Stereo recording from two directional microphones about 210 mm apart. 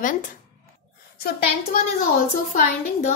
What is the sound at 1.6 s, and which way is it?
A woman's voice, 35° left (ahead or behind).